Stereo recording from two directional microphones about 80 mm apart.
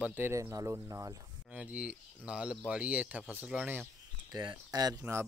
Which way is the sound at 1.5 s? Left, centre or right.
Centre.